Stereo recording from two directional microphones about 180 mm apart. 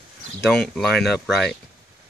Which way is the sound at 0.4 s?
Centre (ahead or behind).